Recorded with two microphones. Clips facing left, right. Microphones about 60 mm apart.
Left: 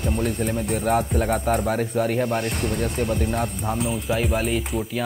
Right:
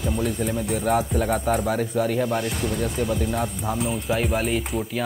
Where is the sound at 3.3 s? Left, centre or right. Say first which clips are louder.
Left 1 dB; centre.